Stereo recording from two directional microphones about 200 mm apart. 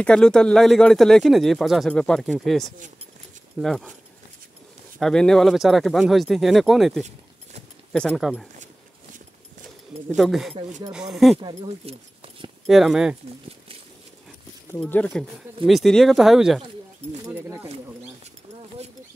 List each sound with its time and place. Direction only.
0.0 s speech: 5° left (ahead or behind)
5.0 s speech: 5° left (ahead or behind)
10.1 s speech: centre (ahead or behind)
11.3 s speech: 25° right (ahead or behind)
12.6 s speech: centre (ahead or behind)
14.7 s speech: 10° left (ahead or behind); by 17.6 s 10° right (ahead or behind)